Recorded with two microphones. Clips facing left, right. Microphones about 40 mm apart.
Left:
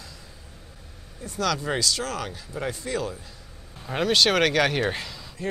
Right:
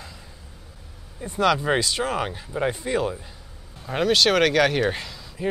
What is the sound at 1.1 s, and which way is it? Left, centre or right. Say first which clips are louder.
Speech: right 6 dB; right.